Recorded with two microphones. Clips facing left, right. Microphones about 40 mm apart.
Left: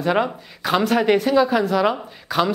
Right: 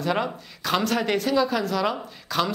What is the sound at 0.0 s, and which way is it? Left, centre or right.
Speech, centre.